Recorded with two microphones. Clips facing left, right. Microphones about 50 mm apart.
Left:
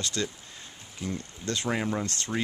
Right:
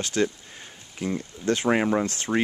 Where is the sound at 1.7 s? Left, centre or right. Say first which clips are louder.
Right 6 dB; right.